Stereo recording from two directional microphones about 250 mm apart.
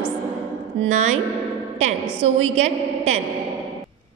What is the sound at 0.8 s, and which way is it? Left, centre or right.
Speech, right.